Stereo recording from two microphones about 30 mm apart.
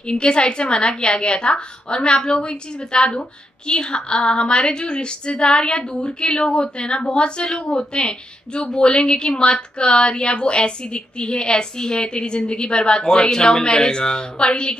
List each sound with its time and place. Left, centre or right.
0.1 s a woman's voice: left